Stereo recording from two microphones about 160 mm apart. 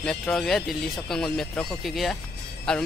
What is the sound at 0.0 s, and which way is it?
Speech, 5° left (ahead or behind).